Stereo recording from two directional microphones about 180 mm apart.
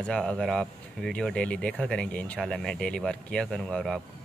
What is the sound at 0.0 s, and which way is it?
Speech, 5° left (ahead or behind).